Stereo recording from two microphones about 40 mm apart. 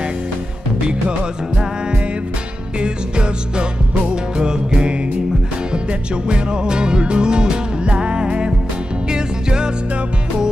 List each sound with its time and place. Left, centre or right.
2.8 s music: right